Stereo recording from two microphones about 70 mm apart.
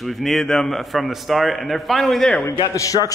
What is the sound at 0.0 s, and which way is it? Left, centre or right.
A man's voice, centre.